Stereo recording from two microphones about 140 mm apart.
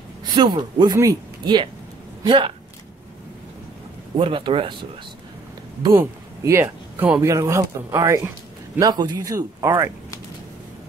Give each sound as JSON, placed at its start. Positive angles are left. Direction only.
{"t": 0.2, "sound": "a man's voice", "side_deg": -30}
{"t": 4.2, "sound": "speech", "side_deg": -35}
{"t": 5.9, "sound": "speech", "side_deg": -15}